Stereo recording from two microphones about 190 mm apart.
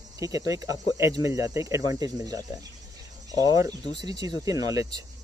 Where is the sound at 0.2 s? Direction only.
20° right (ahead or behind).